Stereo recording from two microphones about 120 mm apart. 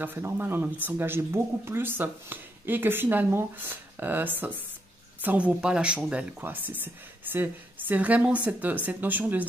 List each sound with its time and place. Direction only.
0.0 s speech: 15° right (ahead or behind)
7.9 s speech: 15° right (ahead or behind)